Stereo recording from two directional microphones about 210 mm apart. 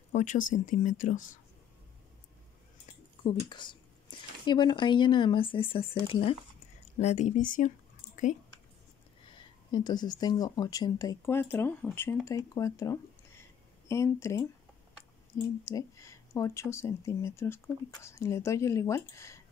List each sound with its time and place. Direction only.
0.1 s speech: 35° left (ahead or behind)
2.9 s a sound: 20° left (ahead or behind)
4.5 s speech: 20° left (ahead or behind); by 7.7 s 40° left (ahead or behind)
9.7 s speech: 20° left (ahead or behind)
15.6 s speech: 15° left (ahead or behind)